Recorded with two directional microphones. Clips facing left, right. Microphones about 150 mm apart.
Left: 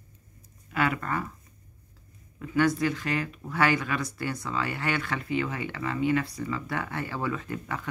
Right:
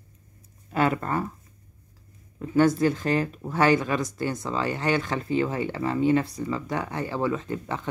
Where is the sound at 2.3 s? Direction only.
30° right (ahead or behind).